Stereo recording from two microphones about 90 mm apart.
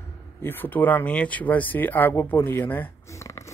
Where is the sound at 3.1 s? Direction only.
35° left (ahead or behind).